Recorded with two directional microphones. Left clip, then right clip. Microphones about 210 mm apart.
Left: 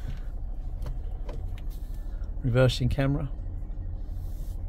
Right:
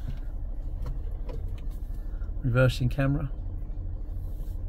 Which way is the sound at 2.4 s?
15° left (ahead or behind).